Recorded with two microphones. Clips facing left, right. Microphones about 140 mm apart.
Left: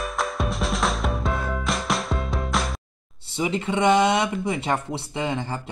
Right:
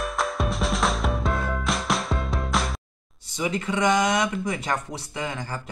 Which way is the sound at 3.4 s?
25° left (ahead or behind).